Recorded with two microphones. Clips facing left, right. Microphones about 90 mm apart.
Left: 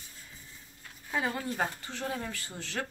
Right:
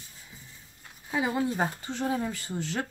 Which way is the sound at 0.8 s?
15° right (ahead or behind).